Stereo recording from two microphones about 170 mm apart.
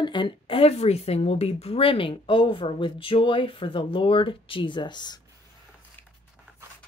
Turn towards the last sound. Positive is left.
turn(degrees=25)  # may be behind; listen again after turning